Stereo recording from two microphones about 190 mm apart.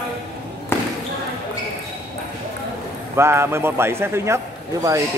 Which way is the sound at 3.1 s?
15° right (ahead or behind).